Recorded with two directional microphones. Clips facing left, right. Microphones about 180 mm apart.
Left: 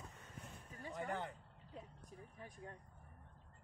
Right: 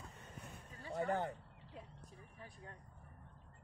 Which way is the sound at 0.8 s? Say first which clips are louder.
Right 6 dB; 45° right (ahead or behind).